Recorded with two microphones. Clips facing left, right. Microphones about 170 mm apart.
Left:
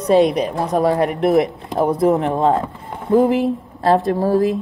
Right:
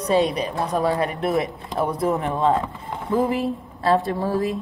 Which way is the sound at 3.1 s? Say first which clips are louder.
Left 7 dB; 65° left (ahead or behind).